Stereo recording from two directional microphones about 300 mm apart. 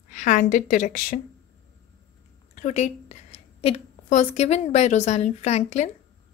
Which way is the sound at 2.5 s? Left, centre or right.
Left.